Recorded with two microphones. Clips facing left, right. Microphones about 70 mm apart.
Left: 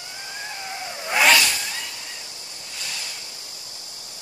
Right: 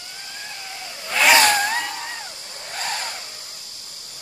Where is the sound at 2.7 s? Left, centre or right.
Right.